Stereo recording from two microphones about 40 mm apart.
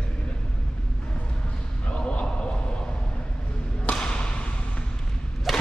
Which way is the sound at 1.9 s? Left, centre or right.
Left.